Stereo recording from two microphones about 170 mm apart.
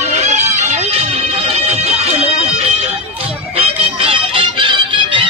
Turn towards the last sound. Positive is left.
turn(degrees=-30)  # may be behind; listen again after turning